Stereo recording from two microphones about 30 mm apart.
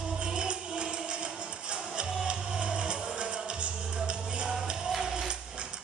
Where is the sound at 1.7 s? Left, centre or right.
Right.